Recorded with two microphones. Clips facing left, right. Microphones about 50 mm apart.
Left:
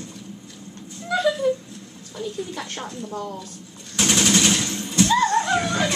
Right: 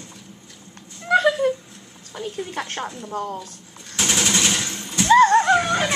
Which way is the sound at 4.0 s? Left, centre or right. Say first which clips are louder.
Left 2 dB; centre.